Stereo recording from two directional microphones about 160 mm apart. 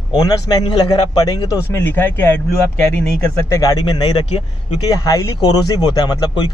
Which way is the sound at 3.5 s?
20° left (ahead or behind).